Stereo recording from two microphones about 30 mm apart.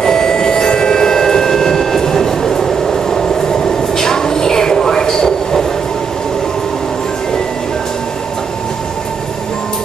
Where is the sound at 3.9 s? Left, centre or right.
Centre.